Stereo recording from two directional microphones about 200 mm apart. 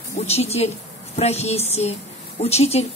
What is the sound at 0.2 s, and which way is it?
A woman's voice, 30° left (ahead or behind).